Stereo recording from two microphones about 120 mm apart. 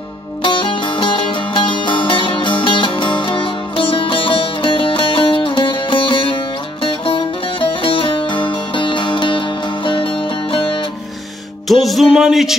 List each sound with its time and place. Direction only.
0.4 s music: 45° left (ahead or behind)
11.6 s music: centre (ahead or behind)